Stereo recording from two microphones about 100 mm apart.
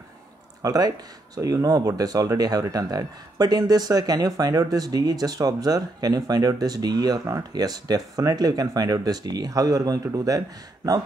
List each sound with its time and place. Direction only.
0.6 s speech: 40° right (ahead or behind)